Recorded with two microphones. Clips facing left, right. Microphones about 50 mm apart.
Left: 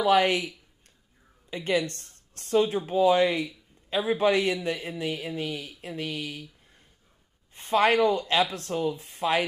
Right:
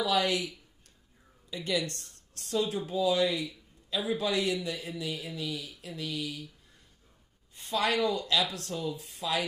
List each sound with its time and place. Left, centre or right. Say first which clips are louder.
0.0 s speech: left 6 dB; left
1.5 s a man's voice: left 5 dB; left
7.5 s speech: left 7 dB; left